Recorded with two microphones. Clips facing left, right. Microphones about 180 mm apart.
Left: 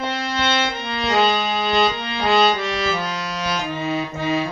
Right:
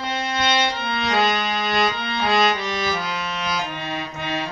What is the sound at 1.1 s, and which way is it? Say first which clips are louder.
Music: left 3 dB; 30° left (ahead or behind).